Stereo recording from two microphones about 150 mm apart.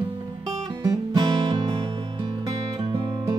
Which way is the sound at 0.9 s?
25° right (ahead or behind).